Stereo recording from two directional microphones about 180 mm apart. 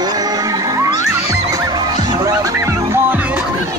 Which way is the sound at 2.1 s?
15° right (ahead or behind).